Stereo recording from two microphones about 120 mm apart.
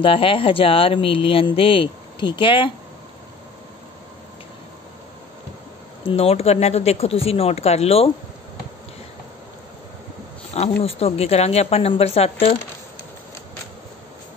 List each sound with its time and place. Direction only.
0.0 s speech: 45° left (ahead or behind)
6.0 s speech: 55° left (ahead or behind)
10.5 s speech: 60° left (ahead or behind)